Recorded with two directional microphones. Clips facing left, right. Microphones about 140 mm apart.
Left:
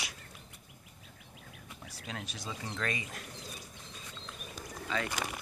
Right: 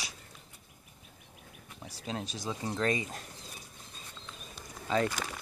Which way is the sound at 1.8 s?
30° right (ahead or behind).